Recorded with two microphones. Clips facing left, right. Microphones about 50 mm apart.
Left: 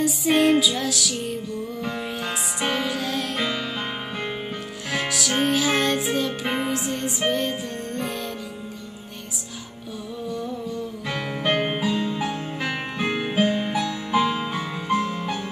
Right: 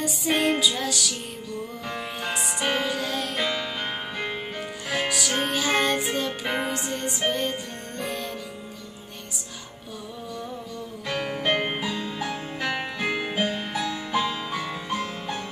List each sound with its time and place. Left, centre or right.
0.0 s music: centre
4.9 s music: centre
11.1 s music: centre
12.2 s music: centre